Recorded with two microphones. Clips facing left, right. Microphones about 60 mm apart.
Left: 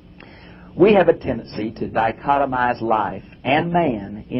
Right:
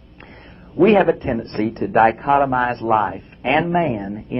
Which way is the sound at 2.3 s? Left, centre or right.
Centre.